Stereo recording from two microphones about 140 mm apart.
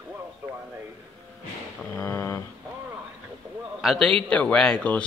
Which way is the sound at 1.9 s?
15° left (ahead or behind).